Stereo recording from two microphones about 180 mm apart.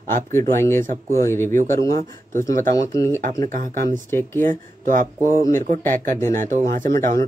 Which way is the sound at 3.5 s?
50° right (ahead or behind).